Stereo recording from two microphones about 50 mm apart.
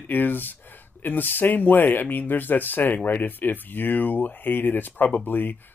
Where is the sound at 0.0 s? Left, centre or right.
Left.